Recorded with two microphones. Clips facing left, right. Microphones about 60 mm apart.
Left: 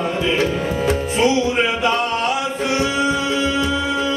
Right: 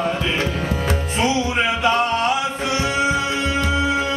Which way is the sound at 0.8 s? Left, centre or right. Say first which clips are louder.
Left 5 dB; centre.